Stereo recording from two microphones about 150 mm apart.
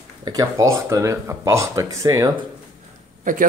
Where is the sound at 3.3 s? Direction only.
65° right (ahead or behind).